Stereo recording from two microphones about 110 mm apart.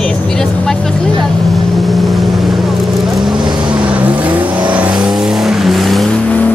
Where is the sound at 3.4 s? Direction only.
45° right (ahead or behind).